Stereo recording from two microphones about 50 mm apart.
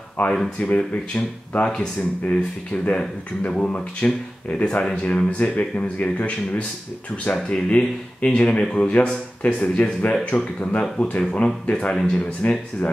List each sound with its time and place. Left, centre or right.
0.2 s speech: left